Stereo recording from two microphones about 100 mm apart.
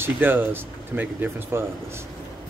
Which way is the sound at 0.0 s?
20° right (ahead or behind).